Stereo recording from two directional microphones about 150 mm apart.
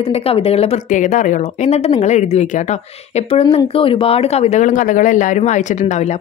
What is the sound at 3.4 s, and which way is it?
Speech, 35° left (ahead or behind).